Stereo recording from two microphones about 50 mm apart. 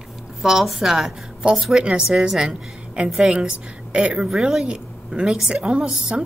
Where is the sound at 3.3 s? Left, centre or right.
Right.